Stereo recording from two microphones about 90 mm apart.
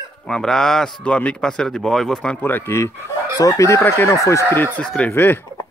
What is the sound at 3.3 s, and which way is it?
Speech, 40° left (ahead or behind).